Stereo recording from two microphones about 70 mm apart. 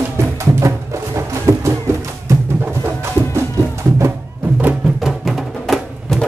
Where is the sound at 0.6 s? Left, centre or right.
Right.